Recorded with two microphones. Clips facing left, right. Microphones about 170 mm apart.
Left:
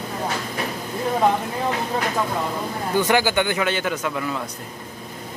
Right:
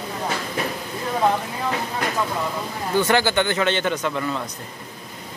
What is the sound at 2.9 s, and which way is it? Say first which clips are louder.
A man's voice: even; 10° left (ahead or behind).